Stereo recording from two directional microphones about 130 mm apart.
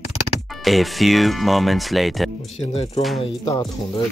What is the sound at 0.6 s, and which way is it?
Speech, centre (ahead or behind).